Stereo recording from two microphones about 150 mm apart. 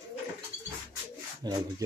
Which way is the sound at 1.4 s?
25° right (ahead or behind).